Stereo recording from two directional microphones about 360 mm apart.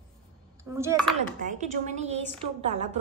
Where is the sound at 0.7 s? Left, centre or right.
Centre.